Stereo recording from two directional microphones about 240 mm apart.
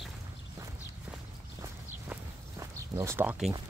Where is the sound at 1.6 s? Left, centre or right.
Centre.